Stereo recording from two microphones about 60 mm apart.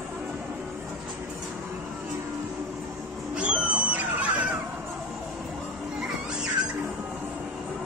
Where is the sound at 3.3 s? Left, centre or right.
Right.